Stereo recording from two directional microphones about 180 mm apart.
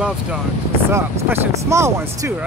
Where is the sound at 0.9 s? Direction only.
15° right (ahead or behind).